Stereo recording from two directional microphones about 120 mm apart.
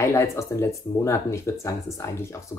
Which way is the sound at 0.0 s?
25° left (ahead or behind).